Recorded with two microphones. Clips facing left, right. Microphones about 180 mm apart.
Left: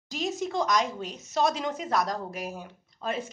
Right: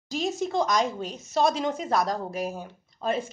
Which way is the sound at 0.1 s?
30° right (ahead or behind).